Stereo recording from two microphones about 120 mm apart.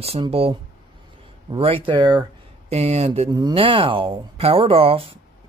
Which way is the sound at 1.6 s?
50° right (ahead or behind).